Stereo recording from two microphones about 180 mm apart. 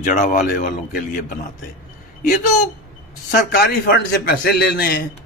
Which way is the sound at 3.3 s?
60° left (ahead or behind).